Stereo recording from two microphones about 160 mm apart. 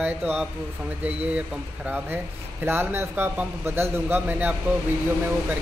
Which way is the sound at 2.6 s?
15° right (ahead or behind).